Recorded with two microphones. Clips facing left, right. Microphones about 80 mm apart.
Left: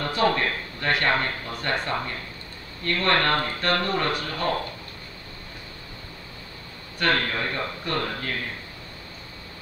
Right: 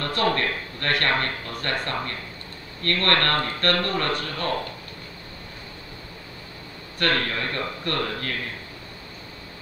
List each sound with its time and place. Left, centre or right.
0.0 s speech: centre
7.0 s speech: centre